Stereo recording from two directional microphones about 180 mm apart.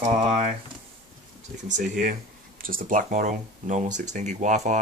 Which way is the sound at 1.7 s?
45° right (ahead or behind).